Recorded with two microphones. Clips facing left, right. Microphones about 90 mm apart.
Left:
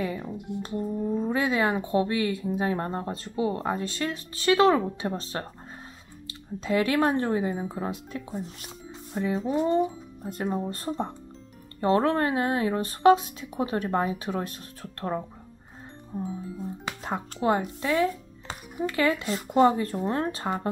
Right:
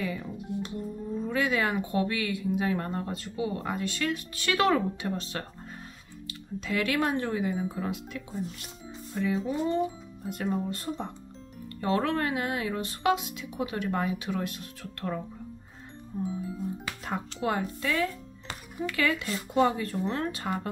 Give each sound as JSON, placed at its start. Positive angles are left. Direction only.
{"t": 0.0, "sound": "speech", "side_deg": 30}
{"t": 6.6, "sound": "speech", "side_deg": 30}
{"t": 16.1, "sound": "speech", "side_deg": 25}